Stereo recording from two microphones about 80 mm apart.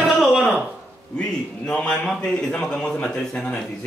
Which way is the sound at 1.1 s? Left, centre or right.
Centre.